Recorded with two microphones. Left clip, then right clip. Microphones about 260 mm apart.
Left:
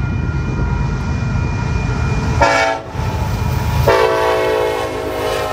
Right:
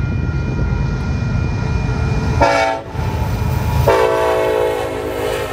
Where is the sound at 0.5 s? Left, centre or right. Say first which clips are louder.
Left 2 dB; left.